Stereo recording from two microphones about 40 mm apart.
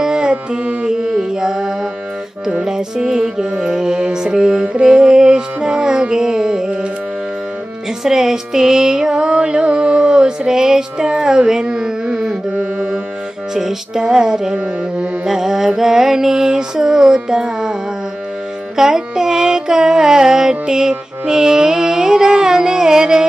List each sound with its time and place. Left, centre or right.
0.0 s carnatic music: right
0.8 s mantra: centre
4.8 s music: centre
8.0 s music: centre
11.6 s carnatic music: right
12.4 s music: right
13.6 s mantra: centre
18.8 s mantra: centre